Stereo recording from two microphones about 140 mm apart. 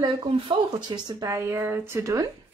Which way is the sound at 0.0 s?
35° right (ahead or behind).